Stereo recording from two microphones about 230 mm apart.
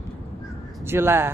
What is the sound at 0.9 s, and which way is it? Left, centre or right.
Speech, centre.